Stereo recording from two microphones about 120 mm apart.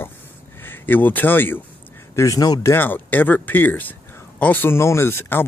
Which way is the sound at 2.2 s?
30° left (ahead or behind).